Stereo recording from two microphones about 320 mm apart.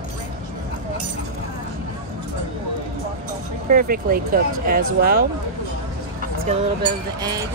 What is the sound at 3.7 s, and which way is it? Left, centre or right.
Speech, right.